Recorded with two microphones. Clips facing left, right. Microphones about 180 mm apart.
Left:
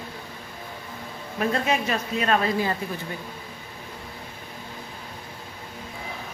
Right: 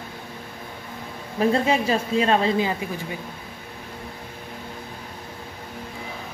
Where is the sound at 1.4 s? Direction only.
30° right (ahead or behind).